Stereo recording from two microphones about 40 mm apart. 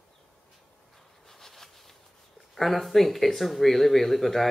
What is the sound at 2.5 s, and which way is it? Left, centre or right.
Speech, centre.